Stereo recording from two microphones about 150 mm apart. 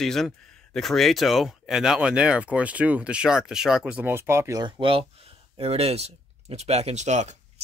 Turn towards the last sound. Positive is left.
turn(degrees=-50)  # may be behind; listen again after turning